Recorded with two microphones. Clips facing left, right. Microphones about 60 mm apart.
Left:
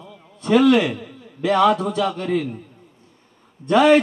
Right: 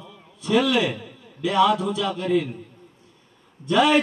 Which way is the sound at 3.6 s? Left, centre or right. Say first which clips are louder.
Left 4 dB; left.